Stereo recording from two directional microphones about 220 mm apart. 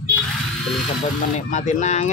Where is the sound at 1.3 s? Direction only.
35° left (ahead or behind).